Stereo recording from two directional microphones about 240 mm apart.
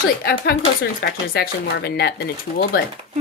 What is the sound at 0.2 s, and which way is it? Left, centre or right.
Speech, left.